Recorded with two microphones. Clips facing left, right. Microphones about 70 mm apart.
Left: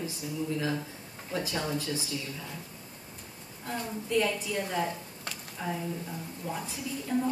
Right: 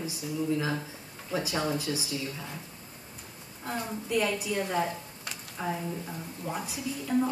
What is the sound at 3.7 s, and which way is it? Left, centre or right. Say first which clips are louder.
Speech: left 1 dB; centre.